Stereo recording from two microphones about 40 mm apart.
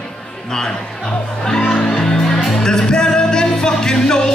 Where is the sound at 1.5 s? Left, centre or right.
Centre.